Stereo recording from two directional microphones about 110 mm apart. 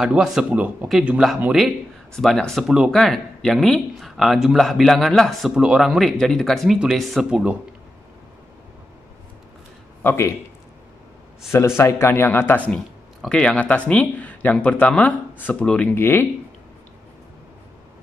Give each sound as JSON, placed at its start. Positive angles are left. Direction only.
{"t": 0.0, "sound": "speech", "side_deg": -5}
{"t": 2.1, "sound": "speech", "side_deg": 5}
{"t": 5.5, "sound": "speech", "side_deg": -5}
{"t": 10.0, "sound": "speech", "side_deg": 25}
{"t": 11.5, "sound": "speech", "side_deg": 25}